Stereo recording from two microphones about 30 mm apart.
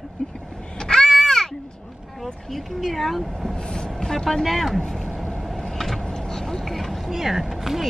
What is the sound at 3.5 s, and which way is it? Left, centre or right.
Speech, left.